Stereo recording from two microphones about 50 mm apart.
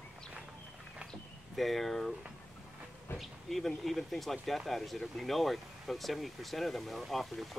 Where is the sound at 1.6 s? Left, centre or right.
Centre.